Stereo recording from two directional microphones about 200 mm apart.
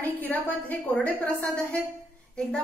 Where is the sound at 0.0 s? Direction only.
10° left (ahead or behind).